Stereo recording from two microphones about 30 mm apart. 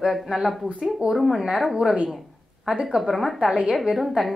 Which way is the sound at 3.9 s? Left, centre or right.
Centre.